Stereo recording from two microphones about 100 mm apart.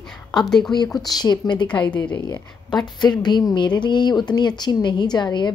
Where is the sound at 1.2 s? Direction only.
50° left (ahead or behind).